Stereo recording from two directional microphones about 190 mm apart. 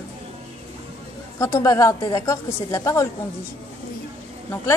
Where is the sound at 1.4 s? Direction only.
15° left (ahead or behind).